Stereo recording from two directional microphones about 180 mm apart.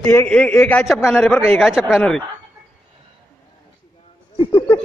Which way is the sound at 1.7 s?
5° right (ahead or behind).